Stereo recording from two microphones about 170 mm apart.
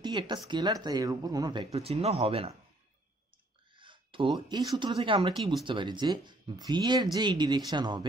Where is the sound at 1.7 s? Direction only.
35° right (ahead or behind).